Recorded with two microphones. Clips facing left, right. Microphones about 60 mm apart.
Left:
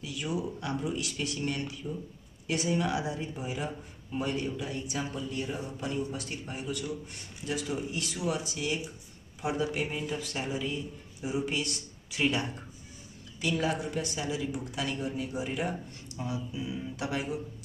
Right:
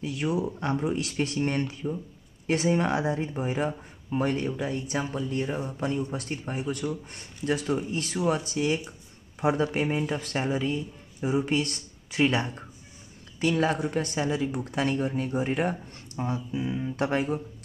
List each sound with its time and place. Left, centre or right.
0.0 s speech: right